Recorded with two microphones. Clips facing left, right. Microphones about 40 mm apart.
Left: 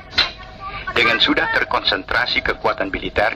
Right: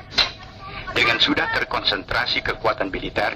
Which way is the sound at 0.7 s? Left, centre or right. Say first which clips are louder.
Left 3 dB; centre.